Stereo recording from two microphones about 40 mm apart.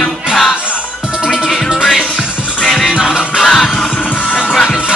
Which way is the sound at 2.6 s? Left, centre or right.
Centre.